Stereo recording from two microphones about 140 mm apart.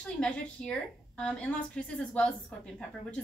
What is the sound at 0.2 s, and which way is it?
A woman's voice, 5° left (ahead or behind).